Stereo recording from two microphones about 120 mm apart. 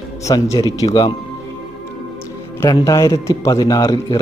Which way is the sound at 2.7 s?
25° left (ahead or behind).